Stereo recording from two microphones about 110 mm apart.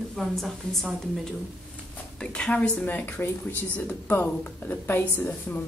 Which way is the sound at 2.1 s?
10° left (ahead or behind).